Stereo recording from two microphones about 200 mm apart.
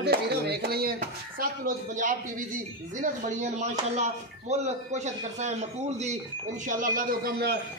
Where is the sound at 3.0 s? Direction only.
35° right (ahead or behind).